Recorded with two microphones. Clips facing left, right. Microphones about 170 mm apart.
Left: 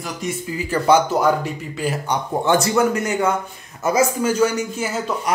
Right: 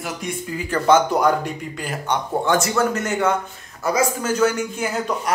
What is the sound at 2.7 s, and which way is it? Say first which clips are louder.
Speech: left 2 dB; 10° left (ahead or behind).